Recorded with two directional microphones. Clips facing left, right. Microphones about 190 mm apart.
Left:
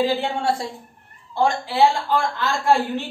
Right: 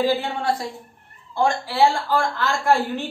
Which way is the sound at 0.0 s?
25° left (ahead or behind).